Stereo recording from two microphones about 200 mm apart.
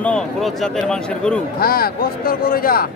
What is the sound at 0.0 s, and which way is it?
Speech, 5° left (ahead or behind).